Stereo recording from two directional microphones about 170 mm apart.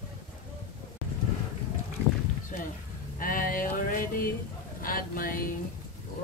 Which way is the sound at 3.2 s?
55° left (ahead or behind).